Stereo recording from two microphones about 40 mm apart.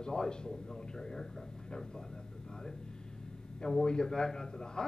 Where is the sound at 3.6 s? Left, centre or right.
Centre.